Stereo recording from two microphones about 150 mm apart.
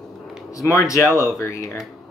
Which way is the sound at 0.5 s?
20° left (ahead or behind).